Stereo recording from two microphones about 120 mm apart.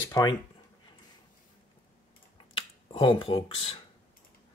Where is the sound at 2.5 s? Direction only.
45° left (ahead or behind).